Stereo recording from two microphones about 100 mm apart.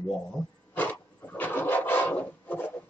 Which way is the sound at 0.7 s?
15° left (ahead or behind).